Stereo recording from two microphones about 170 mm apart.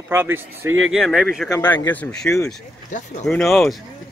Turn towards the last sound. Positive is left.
turn(degrees=0)  # may be behind; listen again after turning